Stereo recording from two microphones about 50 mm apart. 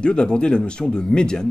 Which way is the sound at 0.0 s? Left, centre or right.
Centre.